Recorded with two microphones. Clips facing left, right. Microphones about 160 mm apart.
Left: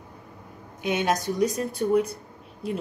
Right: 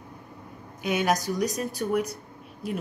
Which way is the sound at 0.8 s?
25° left (ahead or behind).